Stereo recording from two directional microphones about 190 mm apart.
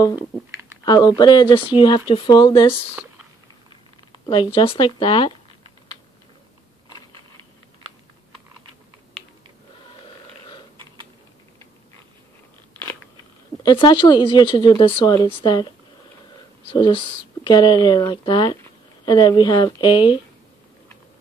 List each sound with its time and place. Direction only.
0.8 s speech: 25° left (ahead or behind)
4.3 s speech: 25° left (ahead or behind)
13.6 s speech: 20° left (ahead or behind)
16.7 s speech: 25° left (ahead or behind)